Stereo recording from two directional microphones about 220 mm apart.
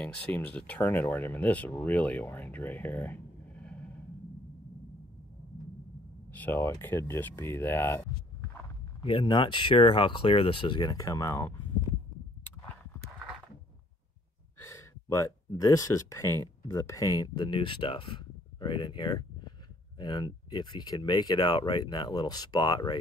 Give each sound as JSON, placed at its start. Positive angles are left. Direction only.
{"t": 0.0, "sound": "speech", "side_deg": 5}
{"t": 6.3, "sound": "speech", "side_deg": 10}
{"t": 9.0, "sound": "speech", "side_deg": 20}
{"t": 14.6, "sound": "speech", "side_deg": 10}